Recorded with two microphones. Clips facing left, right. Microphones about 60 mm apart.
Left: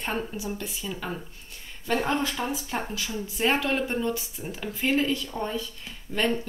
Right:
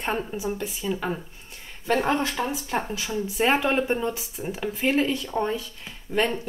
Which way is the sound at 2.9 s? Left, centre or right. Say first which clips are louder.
Right 5 dB; centre.